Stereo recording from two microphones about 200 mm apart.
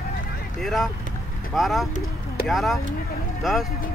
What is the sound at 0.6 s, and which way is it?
Speech, centre (ahead or behind).